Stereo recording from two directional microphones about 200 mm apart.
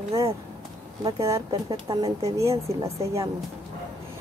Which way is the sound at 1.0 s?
20° right (ahead or behind).